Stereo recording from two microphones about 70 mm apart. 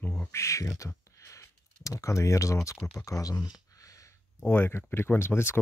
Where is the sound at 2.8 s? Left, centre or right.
Left.